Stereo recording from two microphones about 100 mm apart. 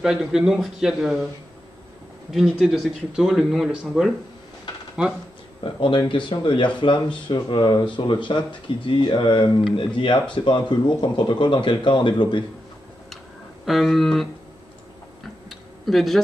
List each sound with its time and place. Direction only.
0.0 s speech: 5° right (ahead or behind)
2.3 s speech: centre (ahead or behind)
5.6 s speech: 55° left (ahead or behind)
13.7 s speech: centre (ahead or behind)
15.8 s speech: centre (ahead or behind)